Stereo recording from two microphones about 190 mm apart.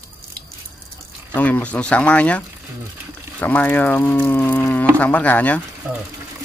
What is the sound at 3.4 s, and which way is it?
Speech, 10° left (ahead or behind).